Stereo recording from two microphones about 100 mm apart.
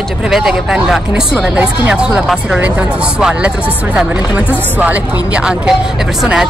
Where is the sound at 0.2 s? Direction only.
5° right (ahead or behind).